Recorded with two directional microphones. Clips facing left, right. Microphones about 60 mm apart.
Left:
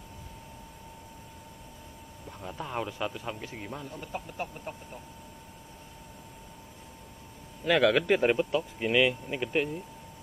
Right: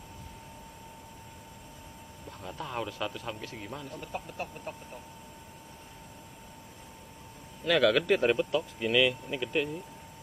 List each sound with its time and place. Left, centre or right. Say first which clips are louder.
2.4 s speech: left 1 dB; centre
7.6 s speech: left 1 dB; centre